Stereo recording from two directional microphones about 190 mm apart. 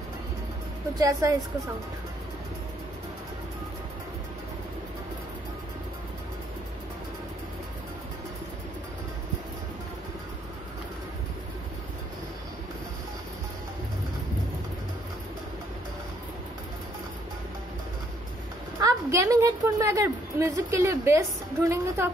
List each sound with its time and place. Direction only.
0.9 s a woman's voice: 20° right (ahead or behind)
18.8 s a woman's voice: 15° right (ahead or behind)